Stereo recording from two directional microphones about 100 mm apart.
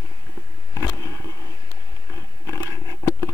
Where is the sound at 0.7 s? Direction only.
35° left (ahead or behind).